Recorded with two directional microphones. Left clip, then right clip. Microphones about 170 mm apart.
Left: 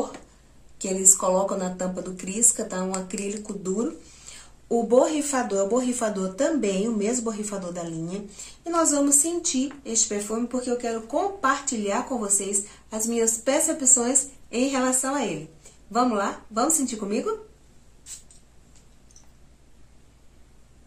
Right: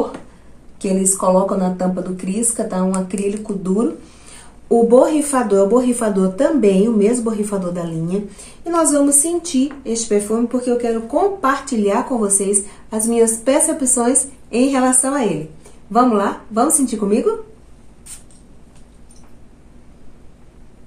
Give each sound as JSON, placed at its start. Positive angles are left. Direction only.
{"t": 0.7, "sound": "speech", "side_deg": 20}
{"t": 4.6, "sound": "speech", "side_deg": 0}